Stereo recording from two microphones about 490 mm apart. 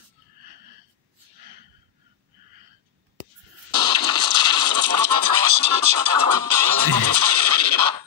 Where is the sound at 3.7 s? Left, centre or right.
Right.